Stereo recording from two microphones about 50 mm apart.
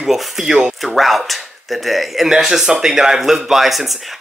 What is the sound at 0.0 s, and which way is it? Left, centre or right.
A man's voice, centre.